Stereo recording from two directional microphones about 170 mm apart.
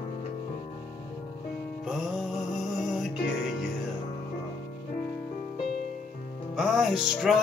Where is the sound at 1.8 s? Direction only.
Centre (ahead or behind).